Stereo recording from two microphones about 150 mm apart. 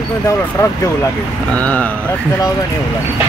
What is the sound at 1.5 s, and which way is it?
Speech, 10° left (ahead or behind).